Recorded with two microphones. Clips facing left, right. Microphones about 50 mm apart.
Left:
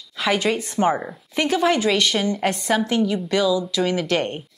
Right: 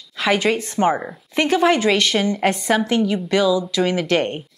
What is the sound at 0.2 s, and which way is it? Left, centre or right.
A woman's voice, centre.